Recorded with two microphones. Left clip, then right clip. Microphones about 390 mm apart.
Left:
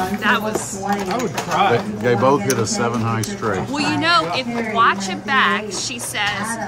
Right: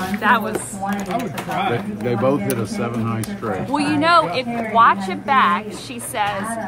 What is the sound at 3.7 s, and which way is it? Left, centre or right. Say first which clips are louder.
Speech: right 3 dB; centre.